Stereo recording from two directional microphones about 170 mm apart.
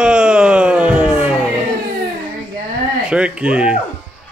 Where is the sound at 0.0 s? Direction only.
5° right (ahead or behind).